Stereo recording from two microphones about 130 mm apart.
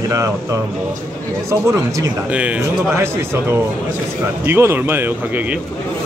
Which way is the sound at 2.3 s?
10° right (ahead or behind).